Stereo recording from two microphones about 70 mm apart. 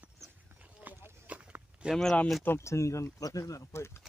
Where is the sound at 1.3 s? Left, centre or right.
Centre.